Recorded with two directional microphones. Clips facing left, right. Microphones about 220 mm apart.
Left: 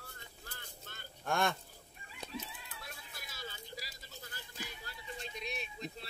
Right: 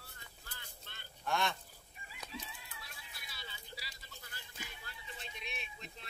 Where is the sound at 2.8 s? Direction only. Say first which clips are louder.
Left 5 dB; 45° left (ahead or behind).